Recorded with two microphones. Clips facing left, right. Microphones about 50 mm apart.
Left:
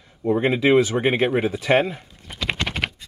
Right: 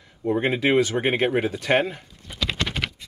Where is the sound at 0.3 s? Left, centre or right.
Centre.